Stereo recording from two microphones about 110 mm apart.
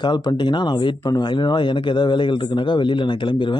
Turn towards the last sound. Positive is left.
turn(degrees=45)  # may be behind; listen again after turning